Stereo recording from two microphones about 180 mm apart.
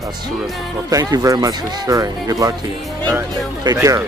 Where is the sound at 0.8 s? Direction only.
20° right (ahead or behind).